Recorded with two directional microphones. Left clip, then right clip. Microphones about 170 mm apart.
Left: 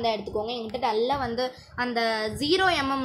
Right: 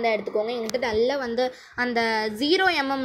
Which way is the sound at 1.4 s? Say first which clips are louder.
Right 3 dB; 25° right (ahead or behind).